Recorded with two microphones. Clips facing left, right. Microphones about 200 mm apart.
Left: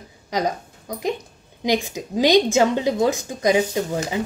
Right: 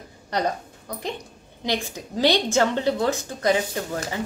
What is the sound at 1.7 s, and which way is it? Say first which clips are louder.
A woman's voice: left 5 dB; 15° left (ahead or behind).